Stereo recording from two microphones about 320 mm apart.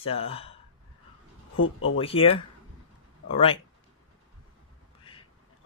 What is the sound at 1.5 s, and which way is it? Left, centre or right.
Speech, left.